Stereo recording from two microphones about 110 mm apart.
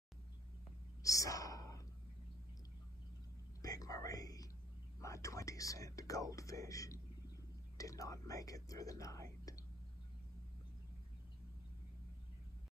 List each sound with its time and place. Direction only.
1.0 s a sound: 30° left (ahead or behind)
3.6 s whispering: 35° left (ahead or behind)
5.0 s speech: 30° left (ahead or behind)